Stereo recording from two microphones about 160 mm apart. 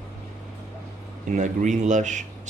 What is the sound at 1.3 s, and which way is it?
Speech, 50° right (ahead or behind).